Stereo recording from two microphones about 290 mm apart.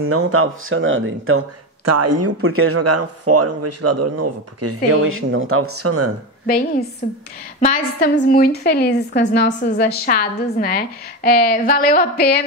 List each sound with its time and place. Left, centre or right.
0.0 s speech: right
1.9 s speech: right
7.6 s a woman's voice: left